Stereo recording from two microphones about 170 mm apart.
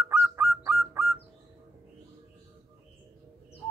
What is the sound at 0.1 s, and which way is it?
Bird, 10° right (ahead or behind).